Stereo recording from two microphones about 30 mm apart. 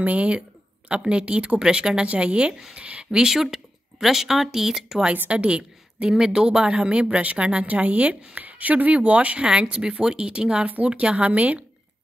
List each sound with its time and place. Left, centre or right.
0.0 s a woman's voice: right
0.8 s speech: right
1.6 s speech: right
3.1 s speech: right
3.3 s speech: centre
5.3 s a woman's voice: right
6.1 s speech: right
6.6 s speech: right
7.6 s a woman's voice: right
9.5 s a woman's voice: right